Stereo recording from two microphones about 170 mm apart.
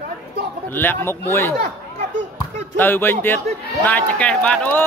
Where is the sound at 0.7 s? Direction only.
10° left (ahead or behind).